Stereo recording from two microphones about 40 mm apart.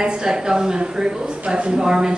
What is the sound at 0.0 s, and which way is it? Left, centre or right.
A woman's voice, centre.